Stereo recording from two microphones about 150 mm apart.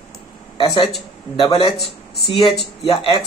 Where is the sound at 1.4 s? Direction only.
35° left (ahead or behind).